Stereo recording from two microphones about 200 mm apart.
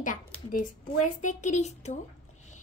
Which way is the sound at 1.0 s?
35° left (ahead or behind).